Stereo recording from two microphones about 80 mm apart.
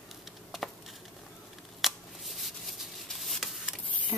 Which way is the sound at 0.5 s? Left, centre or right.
Centre.